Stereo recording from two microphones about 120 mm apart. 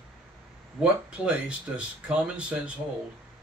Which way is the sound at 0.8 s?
10° right (ahead or behind).